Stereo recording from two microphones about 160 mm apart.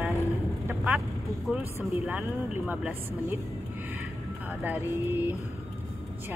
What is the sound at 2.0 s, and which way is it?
Speech, 10° right (ahead or behind).